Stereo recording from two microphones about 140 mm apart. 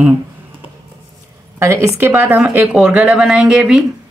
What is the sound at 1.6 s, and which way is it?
Speech, 20° right (ahead or behind).